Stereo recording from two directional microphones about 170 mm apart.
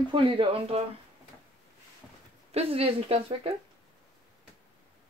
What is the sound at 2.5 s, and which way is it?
Speech, 35° right (ahead or behind).